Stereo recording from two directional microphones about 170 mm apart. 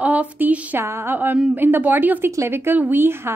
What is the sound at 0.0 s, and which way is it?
A woman's voice, 10° right (ahead or behind).